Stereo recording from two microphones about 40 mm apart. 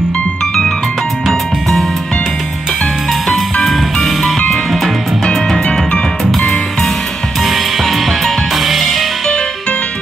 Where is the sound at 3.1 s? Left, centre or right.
Centre.